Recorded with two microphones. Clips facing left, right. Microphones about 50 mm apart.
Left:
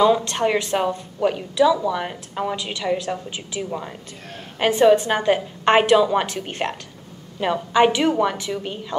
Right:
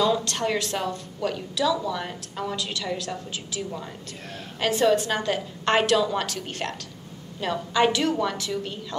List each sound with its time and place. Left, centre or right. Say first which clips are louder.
0.0 s speech: left 6 dB; left